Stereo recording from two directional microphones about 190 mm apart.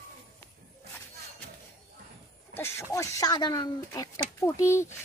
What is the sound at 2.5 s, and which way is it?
Speech, 15° left (ahead or behind).